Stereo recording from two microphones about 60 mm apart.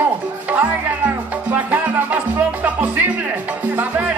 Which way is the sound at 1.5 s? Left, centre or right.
Right.